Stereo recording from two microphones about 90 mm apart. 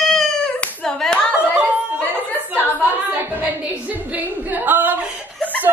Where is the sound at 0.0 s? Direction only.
5° left (ahead or behind).